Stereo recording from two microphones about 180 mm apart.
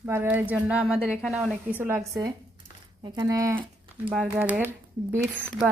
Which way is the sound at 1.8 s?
15° right (ahead or behind).